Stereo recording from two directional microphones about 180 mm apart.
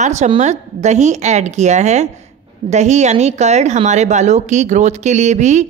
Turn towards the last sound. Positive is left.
turn(degrees=-40)  # may be behind; listen again after turning